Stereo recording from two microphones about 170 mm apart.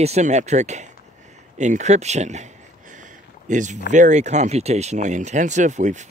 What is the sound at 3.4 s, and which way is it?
Speech, 45° right (ahead or behind).